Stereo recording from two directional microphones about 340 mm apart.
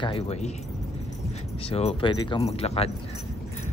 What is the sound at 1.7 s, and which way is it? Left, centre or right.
Speech, centre.